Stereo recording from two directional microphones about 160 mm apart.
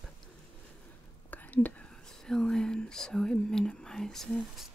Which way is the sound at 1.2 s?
10° left (ahead or behind).